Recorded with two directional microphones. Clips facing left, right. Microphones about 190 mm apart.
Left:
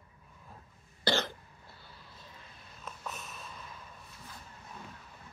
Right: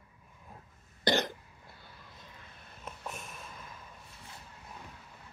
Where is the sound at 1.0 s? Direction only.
20° right (ahead or behind).